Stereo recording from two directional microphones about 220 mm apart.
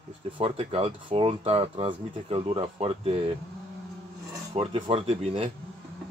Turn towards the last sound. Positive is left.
turn(degrees=-25)  # may be behind; listen again after turning